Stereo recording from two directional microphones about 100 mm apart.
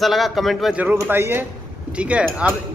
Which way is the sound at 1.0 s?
20° right (ahead or behind).